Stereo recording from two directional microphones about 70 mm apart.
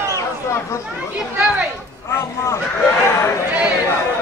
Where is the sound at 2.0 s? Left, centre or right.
Left.